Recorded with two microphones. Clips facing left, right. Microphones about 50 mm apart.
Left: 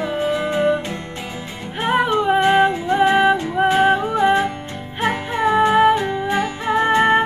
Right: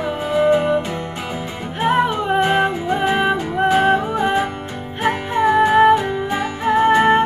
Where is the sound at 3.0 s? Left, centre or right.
Centre.